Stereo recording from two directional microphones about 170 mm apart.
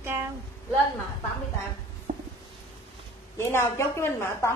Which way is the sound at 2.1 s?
55° right (ahead or behind).